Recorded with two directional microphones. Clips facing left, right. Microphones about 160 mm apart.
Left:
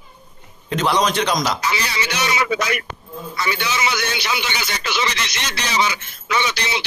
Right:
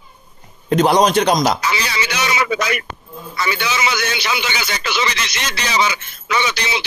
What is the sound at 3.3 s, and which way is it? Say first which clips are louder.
A man's voice: right 2 dB; 90° right.